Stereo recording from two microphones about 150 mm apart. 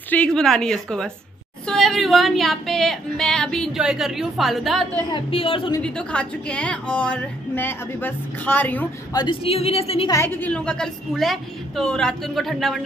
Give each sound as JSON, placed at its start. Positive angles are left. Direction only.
{"t": 0.1, "sound": "female singing", "side_deg": 5}
{"t": 5.1, "sound": "a woman's voice", "side_deg": 35}
{"t": 5.8, "sound": "speech", "side_deg": 5}
{"t": 9.1, "sound": "a woman's voice", "side_deg": 30}
{"t": 10.0, "sound": "female singing", "side_deg": 15}